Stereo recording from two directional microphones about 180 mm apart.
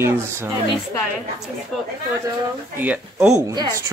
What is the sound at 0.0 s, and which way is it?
Speech, 15° right (ahead or behind).